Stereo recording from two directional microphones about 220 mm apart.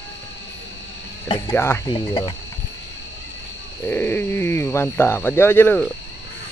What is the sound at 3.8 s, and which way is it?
Speech, 10° left (ahead or behind).